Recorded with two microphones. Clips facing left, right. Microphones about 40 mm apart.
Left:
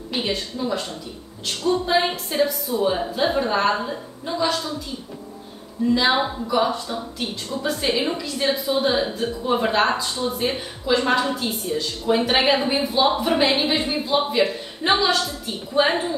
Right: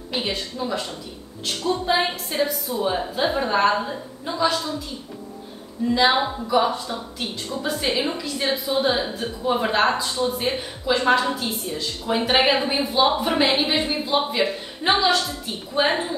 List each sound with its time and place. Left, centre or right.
0.1 s a woman's voice: centre
5.9 s a woman's voice: centre